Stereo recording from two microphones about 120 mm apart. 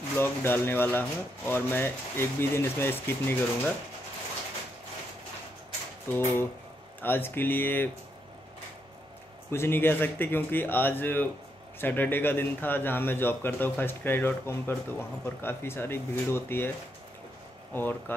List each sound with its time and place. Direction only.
0.2 s a man's voice: 20° left (ahead or behind)
6.1 s a man's voice: 20° left (ahead or behind)
9.5 s a man's voice: 20° left (ahead or behind)
17.7 s a man's voice: 15° left (ahead or behind)